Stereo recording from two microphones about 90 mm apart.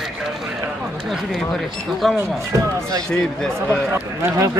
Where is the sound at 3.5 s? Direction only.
30° right (ahead or behind).